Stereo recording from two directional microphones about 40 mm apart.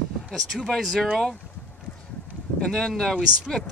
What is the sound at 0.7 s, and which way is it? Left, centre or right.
Speech, centre.